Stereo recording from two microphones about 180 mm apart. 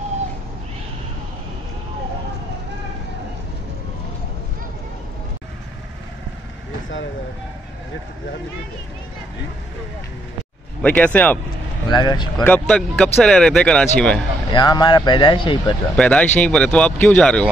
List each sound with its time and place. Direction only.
10.8 s speech: 10° left (ahead or behind)
11.9 s speech: 25° left (ahead or behind)
12.4 s speech: 5° left (ahead or behind)
14.5 s speech: 25° left (ahead or behind)
16.0 s speech: 5° left (ahead or behind)